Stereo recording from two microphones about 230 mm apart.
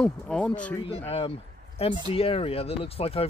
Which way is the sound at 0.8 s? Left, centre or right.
Left.